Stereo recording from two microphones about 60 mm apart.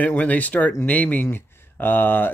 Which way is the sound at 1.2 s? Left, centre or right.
Left.